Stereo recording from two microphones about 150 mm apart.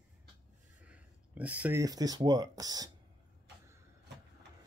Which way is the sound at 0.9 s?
10° right (ahead or behind).